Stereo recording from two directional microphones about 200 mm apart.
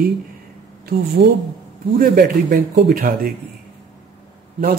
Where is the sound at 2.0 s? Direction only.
45° right (ahead or behind).